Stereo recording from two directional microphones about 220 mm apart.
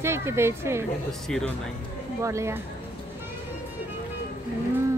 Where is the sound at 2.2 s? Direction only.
15° right (ahead or behind).